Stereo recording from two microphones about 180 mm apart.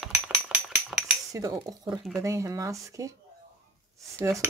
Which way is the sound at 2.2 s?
15° right (ahead or behind).